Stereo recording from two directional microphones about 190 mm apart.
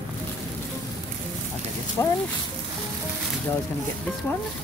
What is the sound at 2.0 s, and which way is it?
Speech, 15° left (ahead or behind).